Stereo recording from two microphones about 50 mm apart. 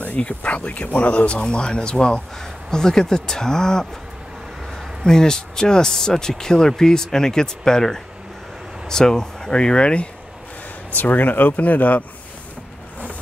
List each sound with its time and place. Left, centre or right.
0.0 s speech: left
5.0 s speech: centre
10.9 s speech: left